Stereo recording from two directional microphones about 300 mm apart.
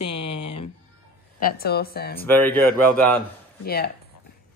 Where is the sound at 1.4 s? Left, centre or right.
Left.